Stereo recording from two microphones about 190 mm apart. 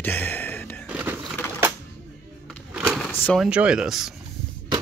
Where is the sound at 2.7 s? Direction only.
Centre (ahead or behind).